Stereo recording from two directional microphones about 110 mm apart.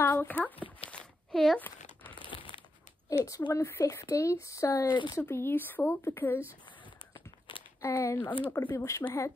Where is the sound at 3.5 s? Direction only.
25° left (ahead or behind).